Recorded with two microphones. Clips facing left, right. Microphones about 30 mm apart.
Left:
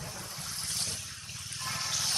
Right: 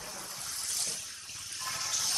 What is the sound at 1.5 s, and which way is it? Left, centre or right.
Water, left.